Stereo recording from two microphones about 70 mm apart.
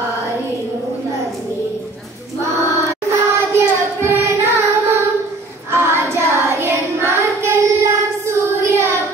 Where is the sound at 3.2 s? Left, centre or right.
Right.